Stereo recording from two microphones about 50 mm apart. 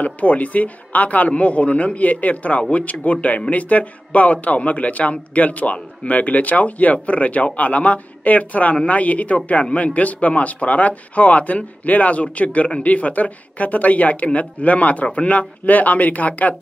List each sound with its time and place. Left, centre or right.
0.0 s speech: left